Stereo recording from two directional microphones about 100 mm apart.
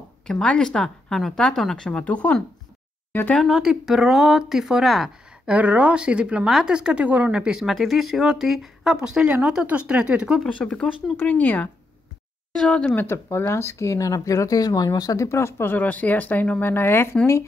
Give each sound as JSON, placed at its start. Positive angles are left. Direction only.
{"t": 0.3, "sound": "a woman's voice", "side_deg": 10}
{"t": 3.3, "sound": "speech", "side_deg": 0}
{"t": 5.5, "sound": "a woman's voice", "side_deg": -15}
{"t": 10.6, "sound": "a woman's voice", "side_deg": 10}
{"t": 13.0, "sound": "speech", "side_deg": 25}